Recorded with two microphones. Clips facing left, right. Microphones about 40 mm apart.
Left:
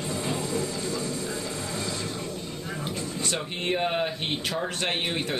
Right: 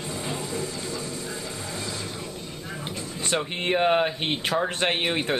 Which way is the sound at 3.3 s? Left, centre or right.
Right.